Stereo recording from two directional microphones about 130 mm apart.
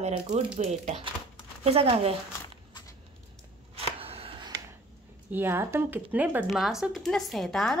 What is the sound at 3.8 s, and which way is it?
Shuffling cards, 50° right (ahead or behind).